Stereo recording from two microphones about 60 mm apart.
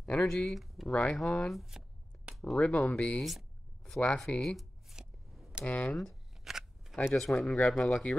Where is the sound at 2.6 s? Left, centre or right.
Left.